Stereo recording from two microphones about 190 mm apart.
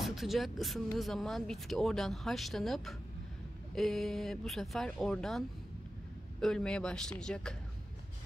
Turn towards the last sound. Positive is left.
turn(degrees=5)  # may be behind; listen again after turning